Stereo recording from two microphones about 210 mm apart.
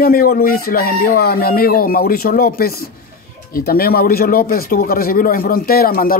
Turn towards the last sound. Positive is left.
turn(degrees=45)  # may be behind; listen again after turning